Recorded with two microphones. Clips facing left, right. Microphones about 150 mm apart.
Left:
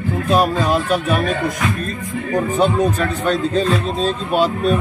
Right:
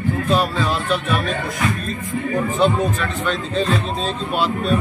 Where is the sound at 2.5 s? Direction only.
40° left (ahead or behind).